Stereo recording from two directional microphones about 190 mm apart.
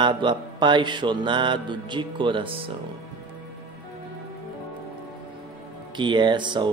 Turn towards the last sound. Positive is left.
turn(degrees=-25)  # may be behind; listen again after turning